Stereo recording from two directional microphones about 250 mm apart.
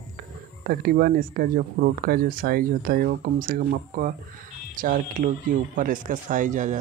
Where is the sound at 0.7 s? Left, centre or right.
Right.